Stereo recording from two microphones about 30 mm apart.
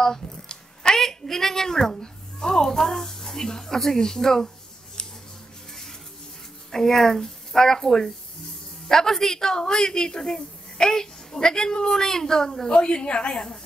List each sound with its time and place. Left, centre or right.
0.9 s a woman's voice: centre
6.7 s a woman's voice: centre
12.6 s a woman's voice: left